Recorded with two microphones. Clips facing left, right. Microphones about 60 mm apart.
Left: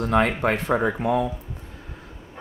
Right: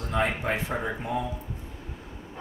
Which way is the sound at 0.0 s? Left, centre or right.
Left.